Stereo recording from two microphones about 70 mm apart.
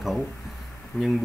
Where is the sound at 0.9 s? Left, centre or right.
Centre.